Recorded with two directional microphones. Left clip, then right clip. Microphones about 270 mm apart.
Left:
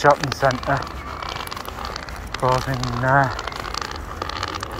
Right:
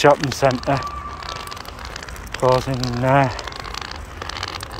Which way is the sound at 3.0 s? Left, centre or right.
Right.